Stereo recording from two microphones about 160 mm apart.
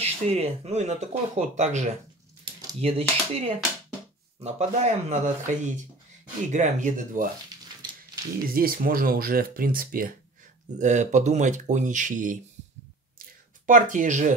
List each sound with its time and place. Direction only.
0.0 s speech: 40° right (ahead or behind)
2.8 s speech: 40° right (ahead or behind)
8.5 s speech: 60° right (ahead or behind)
10.8 s speech: 50° right (ahead or behind)
13.2 s a sound: 55° right (ahead or behind)